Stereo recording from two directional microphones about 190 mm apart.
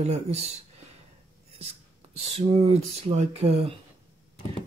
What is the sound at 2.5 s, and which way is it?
Speech, 30° right (ahead or behind).